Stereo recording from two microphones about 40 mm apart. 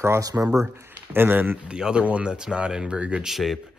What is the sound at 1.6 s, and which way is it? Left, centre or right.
Speech, right.